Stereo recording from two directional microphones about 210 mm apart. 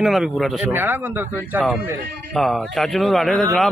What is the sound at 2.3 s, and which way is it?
Speech, centre (ahead or behind).